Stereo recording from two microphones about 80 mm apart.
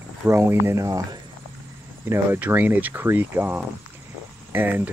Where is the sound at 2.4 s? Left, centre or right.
Right.